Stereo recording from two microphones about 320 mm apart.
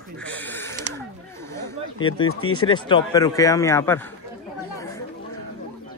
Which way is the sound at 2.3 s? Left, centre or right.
Left.